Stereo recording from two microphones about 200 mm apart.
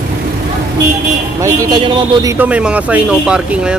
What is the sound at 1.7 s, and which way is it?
Speech, 20° right (ahead or behind).